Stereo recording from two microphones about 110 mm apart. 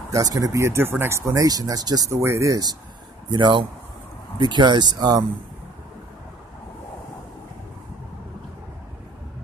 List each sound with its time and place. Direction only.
0.1 s speech: 35° right (ahead or behind)
3.3 s speech: 40° right (ahead or behind)